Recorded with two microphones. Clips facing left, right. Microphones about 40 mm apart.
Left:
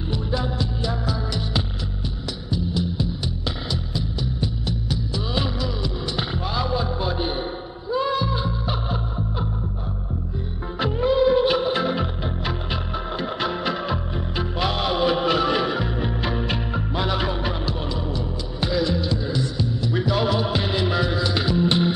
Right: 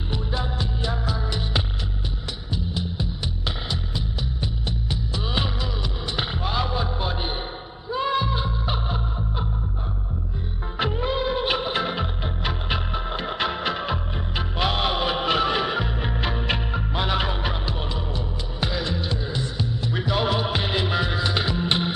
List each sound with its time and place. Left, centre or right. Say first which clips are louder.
0.1 s music: left 3 dB; centre
10.8 s music of bollywood: left 5 dB; centre
12.0 s music: left 2 dB; centre
12.6 s music: even; right